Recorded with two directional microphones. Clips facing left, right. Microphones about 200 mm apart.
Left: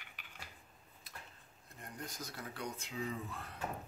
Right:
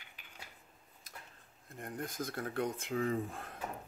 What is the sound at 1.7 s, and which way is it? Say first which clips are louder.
Speech: right 6 dB; 50° right (ahead or behind).